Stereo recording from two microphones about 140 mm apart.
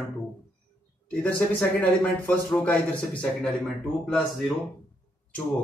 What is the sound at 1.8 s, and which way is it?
A man's voice, 10° left (ahead or behind).